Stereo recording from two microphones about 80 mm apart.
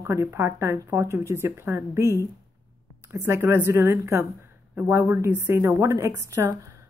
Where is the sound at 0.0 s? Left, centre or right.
Right.